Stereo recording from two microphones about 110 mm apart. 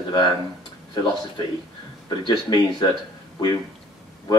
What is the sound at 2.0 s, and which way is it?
Speech, 45° left (ahead or behind).